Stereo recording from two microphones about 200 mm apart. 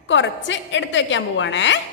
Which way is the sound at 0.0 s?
65° left (ahead or behind).